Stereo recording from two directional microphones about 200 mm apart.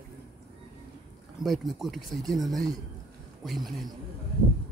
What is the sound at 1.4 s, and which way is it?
Speech, centre (ahead or behind).